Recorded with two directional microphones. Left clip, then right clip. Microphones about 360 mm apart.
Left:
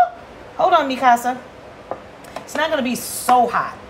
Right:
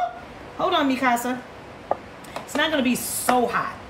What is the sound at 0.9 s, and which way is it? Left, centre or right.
Speech, centre.